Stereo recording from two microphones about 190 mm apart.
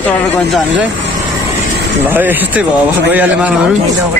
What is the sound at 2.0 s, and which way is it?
Speech, 10° right (ahead or behind).